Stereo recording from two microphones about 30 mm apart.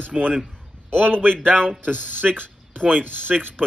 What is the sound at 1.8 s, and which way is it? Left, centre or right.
Speech, right.